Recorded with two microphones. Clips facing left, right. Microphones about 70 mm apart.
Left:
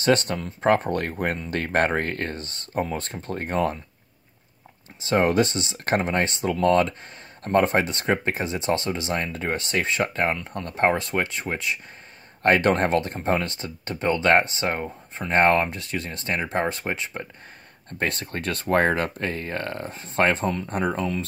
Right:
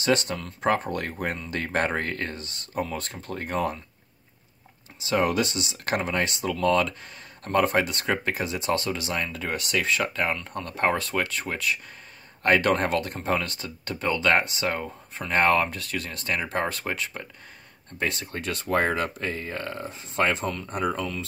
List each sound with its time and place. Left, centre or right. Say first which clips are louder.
0.0 s speech: left 3 dB; left
5.0 s speech: left 4 dB; left
17.9 s speech: left 2 dB; left